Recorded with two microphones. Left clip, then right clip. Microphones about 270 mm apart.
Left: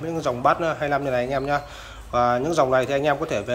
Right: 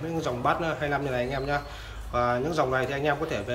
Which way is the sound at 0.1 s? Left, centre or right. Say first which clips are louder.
Left 6 dB; centre.